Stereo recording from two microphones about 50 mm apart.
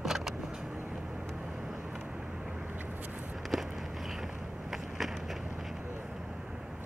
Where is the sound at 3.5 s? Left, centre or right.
Centre.